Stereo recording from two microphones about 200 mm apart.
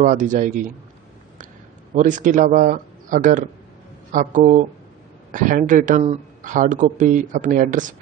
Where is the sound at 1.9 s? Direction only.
40° right (ahead or behind).